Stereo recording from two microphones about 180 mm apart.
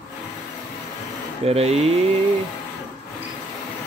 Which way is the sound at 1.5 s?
35° right (ahead or behind).